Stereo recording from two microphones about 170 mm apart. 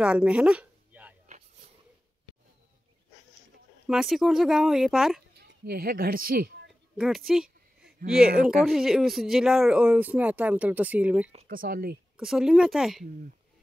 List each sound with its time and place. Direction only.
0.0 s a sound: 5° right (ahead or behind)
3.8 s speech: centre (ahead or behind)
5.4 s speech: 70° right (ahead or behind)
7.0 s a sound: centre (ahead or behind)
8.6 s speech: 5° right (ahead or behind)
11.4 s speech: 60° right (ahead or behind)
12.2 s speech: 5° right (ahead or behind)